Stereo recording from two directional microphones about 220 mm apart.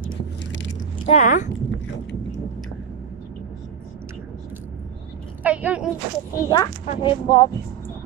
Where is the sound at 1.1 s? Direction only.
35° left (ahead or behind).